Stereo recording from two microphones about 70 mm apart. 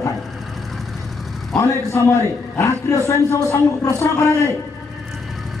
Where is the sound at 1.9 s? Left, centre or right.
Left.